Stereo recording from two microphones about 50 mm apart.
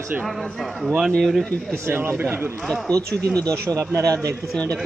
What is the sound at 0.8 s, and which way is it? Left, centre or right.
Speech, centre.